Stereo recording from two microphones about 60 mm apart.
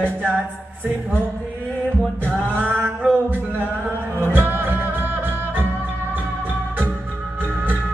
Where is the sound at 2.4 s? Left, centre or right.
Left.